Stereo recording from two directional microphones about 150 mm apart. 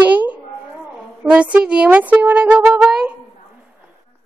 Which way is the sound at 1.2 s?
10° right (ahead or behind).